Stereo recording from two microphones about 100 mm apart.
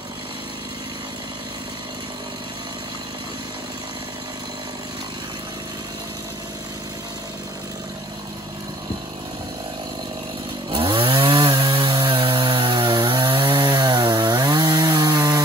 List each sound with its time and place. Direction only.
10.7 s chainsaw: 60° right (ahead or behind); by 15.4 s 45° right (ahead or behind)